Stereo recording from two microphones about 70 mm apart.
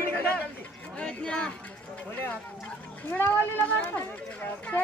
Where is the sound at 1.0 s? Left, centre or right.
Centre.